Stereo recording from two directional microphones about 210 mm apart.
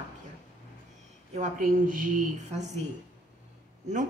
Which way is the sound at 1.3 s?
35° right (ahead or behind).